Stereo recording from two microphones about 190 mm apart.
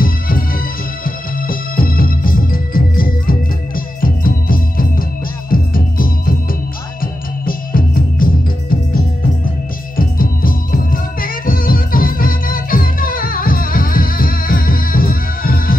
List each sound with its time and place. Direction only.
0.0 s music: 50° left (ahead or behind)
9.9 s music: 50° left (ahead or behind)